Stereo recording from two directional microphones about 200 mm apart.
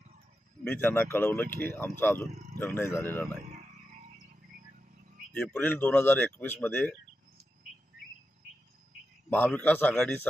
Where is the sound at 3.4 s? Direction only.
40° right (ahead or behind).